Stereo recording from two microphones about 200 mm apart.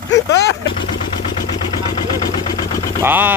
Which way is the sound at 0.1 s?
60° left (ahead or behind).